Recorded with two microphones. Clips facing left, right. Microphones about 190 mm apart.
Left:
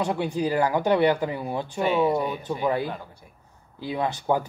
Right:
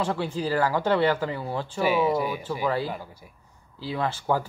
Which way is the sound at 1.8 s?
5° right (ahead or behind).